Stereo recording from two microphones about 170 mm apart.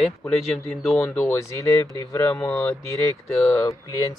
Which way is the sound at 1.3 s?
15° left (ahead or behind).